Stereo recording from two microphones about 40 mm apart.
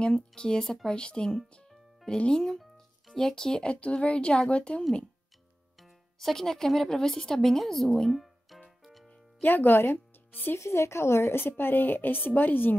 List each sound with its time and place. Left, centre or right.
0.3 s speech: centre
2.4 s music: centre
3.3 s speech: centre
3.8 s a woman's voice: left
6.1 s speech: centre
8.8 s music: centre
9.4 s speech: left
10.5 s a woman's voice: left